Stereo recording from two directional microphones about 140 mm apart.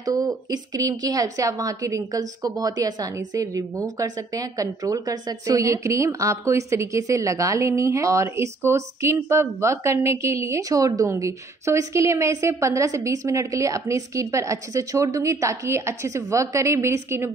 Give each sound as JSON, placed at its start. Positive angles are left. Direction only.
{"t": 0.0, "sound": "a woman's voice", "side_deg": -25}